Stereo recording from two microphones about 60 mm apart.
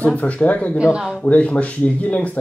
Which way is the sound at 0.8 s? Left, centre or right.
Centre.